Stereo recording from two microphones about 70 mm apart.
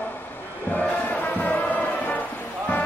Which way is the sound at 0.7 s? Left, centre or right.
Left.